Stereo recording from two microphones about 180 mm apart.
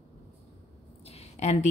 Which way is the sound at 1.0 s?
35° left (ahead or behind).